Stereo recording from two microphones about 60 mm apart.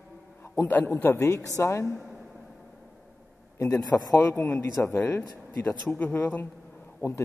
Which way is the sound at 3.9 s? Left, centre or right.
Left.